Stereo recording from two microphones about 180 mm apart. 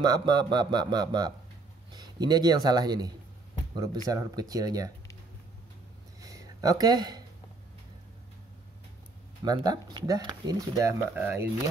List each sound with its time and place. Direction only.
0.0 s speech: 20° right (ahead or behind)
6.2 s a sound: 20° right (ahead or behind)
9.4 s speech: 20° right (ahead or behind)